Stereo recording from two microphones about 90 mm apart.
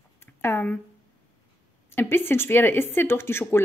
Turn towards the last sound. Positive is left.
turn(degrees=25)  # may be behind; listen again after turning